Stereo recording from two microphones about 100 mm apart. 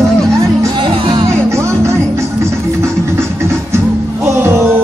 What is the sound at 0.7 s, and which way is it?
Music, 55° right (ahead or behind).